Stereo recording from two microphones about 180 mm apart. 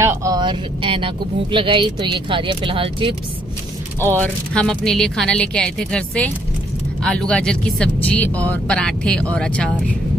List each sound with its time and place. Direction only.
0.0 s speech: 20° right (ahead or behind)
4.0 s speech: 10° left (ahead or behind)